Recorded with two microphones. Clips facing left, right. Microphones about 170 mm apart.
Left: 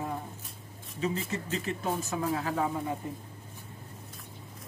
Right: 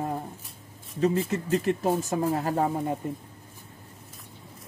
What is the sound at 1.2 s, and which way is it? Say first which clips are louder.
Speech: right 8 dB; 50° right (ahead or behind).